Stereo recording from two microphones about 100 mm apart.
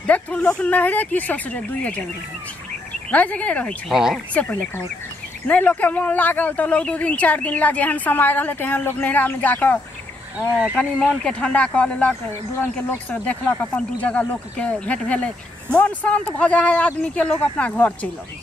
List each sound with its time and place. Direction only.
0.0 s speech: 15° left (ahead or behind)
3.1 s speech: 15° left (ahead or behind)
3.9 s speech: 5° right (ahead or behind)
4.3 s speech: 15° left (ahead or behind)